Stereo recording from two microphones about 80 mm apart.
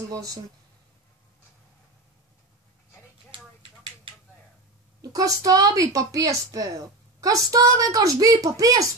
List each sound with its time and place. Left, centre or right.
0.1 s speech: right
5.1 s speech: right